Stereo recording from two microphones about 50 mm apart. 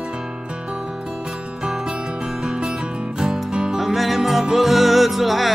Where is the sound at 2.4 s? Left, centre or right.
Centre.